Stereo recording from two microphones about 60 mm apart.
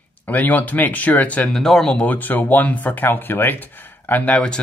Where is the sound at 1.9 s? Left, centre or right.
Left.